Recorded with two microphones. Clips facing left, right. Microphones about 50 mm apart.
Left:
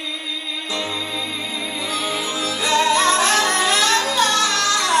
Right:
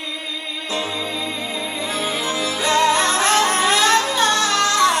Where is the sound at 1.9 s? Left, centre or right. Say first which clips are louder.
Right 1 dB; right.